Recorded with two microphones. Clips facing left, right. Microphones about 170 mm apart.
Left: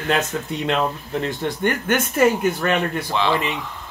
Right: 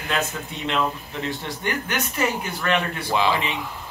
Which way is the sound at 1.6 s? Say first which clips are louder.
Left 7 dB; 55° left (ahead or behind).